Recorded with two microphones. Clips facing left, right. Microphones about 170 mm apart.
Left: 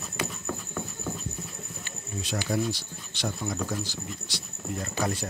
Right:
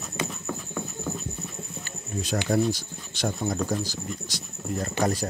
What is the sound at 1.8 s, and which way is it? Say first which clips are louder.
Insect: right 4 dB; 45° right (ahead or behind).